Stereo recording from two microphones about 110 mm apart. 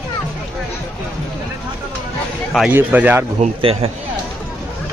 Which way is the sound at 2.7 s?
15° right (ahead or behind).